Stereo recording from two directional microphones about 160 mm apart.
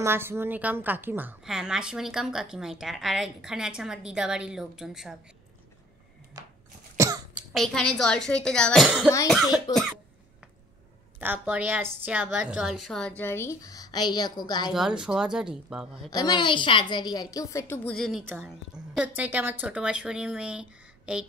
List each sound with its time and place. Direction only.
0.0 s a woman's voice: 15° right (ahead or behind)
6.4 s a sound: 20° right (ahead or behind)
7.0 s cough: 15° right (ahead or behind)
7.3 s a woman's voice: centre (ahead or behind)
8.8 s a woman's voice: 5° right (ahead or behind)
11.1 s a woman's voice: 10° right (ahead or behind); by 14.7 s 25° left (ahead or behind)
14.7 s a woman's voice: 5° right (ahead or behind)
16.1 s a woman's voice: 25° left (ahead or behind)
17.9 s a woman's voice: 5° left (ahead or behind)
18.9 s a woman's voice: 10° right (ahead or behind)